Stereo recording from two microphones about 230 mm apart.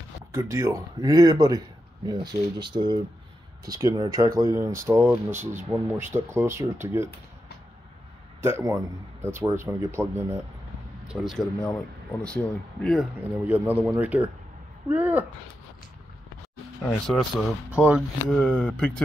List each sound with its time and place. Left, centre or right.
0.3 s speech: centre
8.4 s speech: centre
16.8 s speech: centre